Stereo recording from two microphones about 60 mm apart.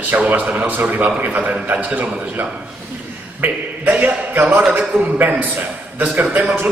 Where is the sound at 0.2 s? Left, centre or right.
Right.